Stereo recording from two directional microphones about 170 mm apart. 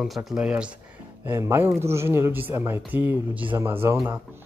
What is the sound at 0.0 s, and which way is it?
Speech, centre (ahead or behind).